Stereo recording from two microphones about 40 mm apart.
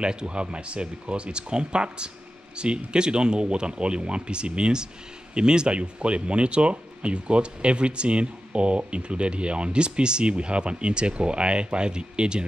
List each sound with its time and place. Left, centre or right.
0.0 s speech: right